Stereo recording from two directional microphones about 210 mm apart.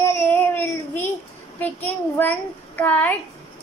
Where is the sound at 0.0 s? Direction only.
10° left (ahead or behind).